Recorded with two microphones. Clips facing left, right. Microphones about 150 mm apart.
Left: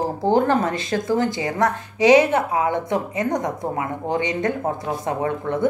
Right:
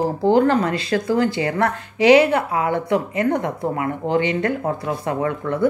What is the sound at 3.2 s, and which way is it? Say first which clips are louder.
A woman's voice: right 2 dB; 15° left (ahead or behind).